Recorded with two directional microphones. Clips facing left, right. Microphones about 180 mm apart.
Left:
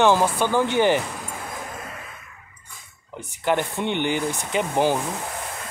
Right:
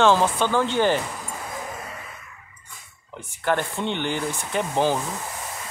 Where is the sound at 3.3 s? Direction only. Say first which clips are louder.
Left 1 dB; 15° left (ahead or behind).